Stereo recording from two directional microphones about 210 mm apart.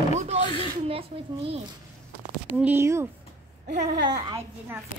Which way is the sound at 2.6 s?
10° right (ahead or behind).